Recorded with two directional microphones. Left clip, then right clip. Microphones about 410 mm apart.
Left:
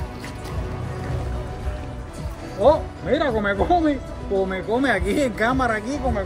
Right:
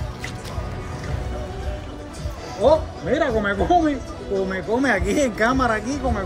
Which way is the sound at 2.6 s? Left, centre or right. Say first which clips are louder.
Even; centre.